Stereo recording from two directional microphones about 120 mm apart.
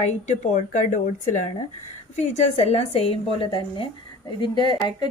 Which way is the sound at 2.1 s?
80° left.